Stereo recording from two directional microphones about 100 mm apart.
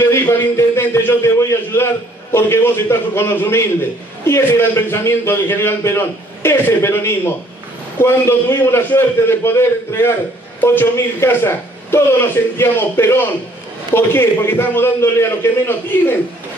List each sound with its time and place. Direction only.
0.1 s a man's voice: 25° left (ahead or behind)